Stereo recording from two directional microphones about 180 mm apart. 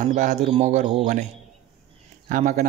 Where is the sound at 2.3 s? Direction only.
45° right (ahead or behind).